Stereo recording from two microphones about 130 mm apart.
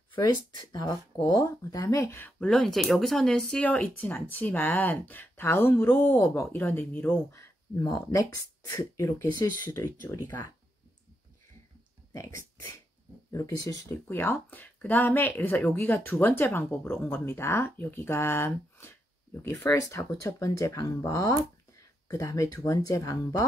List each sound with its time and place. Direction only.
0.2 s speech: 30° left (ahead or behind)
2.4 s speech: 5° left (ahead or behind)
7.3 s speech: 30° left (ahead or behind)
13.3 s speech: 25° left (ahead or behind)